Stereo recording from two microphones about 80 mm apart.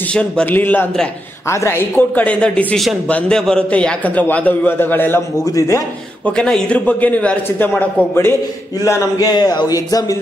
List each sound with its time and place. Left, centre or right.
0.1 s a man's voice: centre
0.5 s a man's voice: left
6.2 s a man's voice: centre
8.1 s a man's voice: left
8.8 s speech: left
9.3 s speech: left